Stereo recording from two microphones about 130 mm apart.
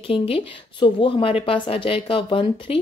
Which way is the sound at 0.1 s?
45° left (ahead or behind).